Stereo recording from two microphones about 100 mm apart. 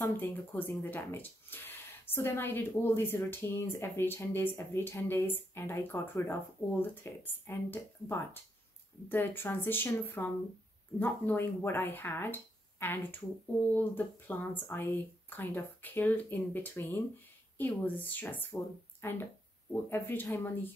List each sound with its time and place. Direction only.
0.0 s speech: 20° left (ahead or behind)